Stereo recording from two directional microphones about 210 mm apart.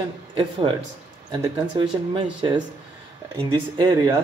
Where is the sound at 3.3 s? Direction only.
20° right (ahead or behind).